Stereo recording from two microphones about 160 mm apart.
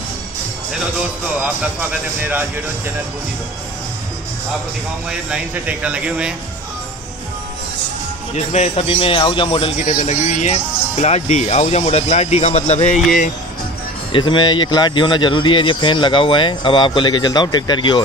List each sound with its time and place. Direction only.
1.4 s speech: 10° right (ahead or behind)
5.3 s speech: 10° right (ahead or behind)
8.5 s speech: 45° left (ahead or behind)
14.1 s speech: 30° left (ahead or behind)